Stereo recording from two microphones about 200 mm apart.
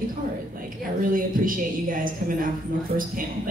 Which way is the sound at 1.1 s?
45° right (ahead or behind).